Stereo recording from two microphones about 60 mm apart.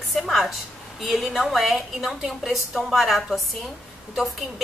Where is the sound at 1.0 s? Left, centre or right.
Centre.